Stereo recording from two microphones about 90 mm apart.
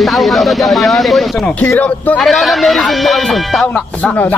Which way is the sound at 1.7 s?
15° left (ahead or behind).